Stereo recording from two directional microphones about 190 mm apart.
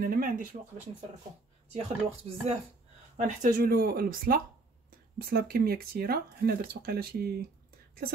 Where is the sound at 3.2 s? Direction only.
40° right (ahead or behind).